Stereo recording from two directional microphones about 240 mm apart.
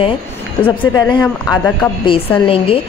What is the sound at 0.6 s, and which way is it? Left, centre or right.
Speech, centre.